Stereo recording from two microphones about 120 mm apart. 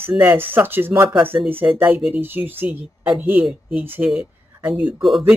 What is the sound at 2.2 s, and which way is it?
Speech, 15° right (ahead or behind).